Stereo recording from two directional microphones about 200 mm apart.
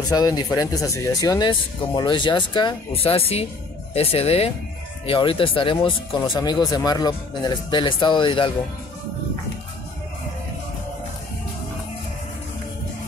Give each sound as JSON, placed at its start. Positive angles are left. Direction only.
{"t": 0.0, "sound": "speech", "side_deg": 20}